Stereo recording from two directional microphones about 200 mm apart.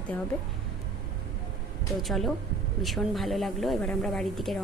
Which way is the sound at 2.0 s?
Centre (ahead or behind).